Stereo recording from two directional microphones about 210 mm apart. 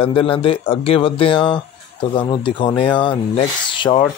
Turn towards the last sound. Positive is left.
turn(degrees=25)  # may be behind; listen again after turning